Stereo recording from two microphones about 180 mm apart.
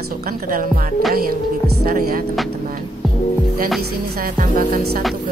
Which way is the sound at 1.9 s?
55° right (ahead or behind).